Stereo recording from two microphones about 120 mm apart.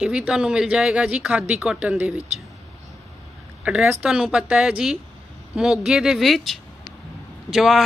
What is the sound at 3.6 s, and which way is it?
A woman's voice, 10° right (ahead or behind).